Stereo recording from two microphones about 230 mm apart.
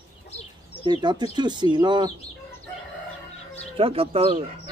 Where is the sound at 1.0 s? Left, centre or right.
Centre.